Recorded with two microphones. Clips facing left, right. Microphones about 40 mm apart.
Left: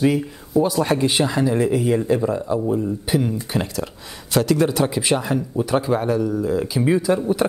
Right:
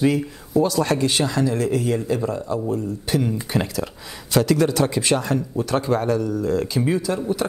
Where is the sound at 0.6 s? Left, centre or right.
Centre.